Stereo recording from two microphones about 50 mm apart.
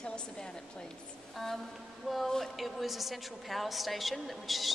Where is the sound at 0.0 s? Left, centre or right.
Centre.